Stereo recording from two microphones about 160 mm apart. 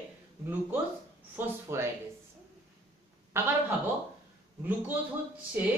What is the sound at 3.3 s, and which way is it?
Speech, 15° right (ahead or behind).